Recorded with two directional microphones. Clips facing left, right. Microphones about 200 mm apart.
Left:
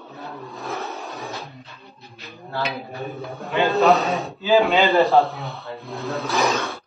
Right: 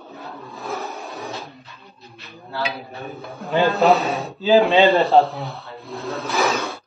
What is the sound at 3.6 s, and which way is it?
Speech, centre (ahead or behind).